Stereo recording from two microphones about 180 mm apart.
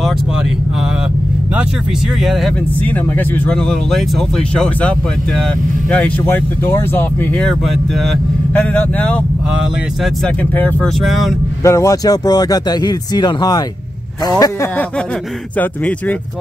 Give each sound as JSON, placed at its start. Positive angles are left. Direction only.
{"t": 2.2, "sound": "speech", "side_deg": 5}
{"t": 10.2, "sound": "speech", "side_deg": 10}